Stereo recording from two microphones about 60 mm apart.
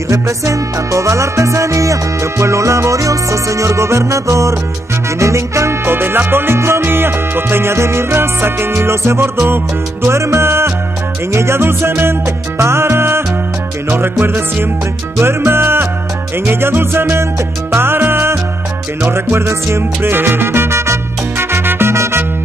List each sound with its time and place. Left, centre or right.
0.1 s music: right
5.9 s music: right
11.3 s salsa music: right
13.8 s music: right
19.0 s salsa music: right